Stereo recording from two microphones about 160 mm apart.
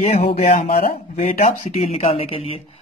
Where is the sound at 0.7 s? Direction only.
35° left (ahead or behind).